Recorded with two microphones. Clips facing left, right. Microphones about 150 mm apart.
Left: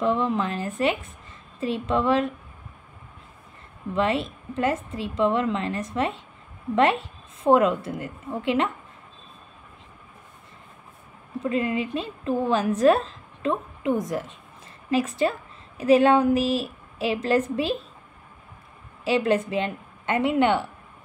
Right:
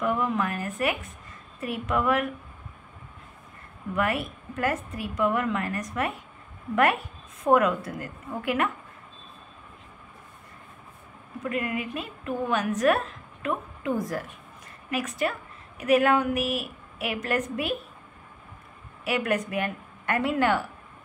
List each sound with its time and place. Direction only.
0.0 s a woman's voice: 25° left (ahead or behind)
3.9 s a woman's voice: 25° left (ahead or behind)
11.4 s a woman's voice: 25° left (ahead or behind)
19.0 s a woman's voice: 25° left (ahead or behind)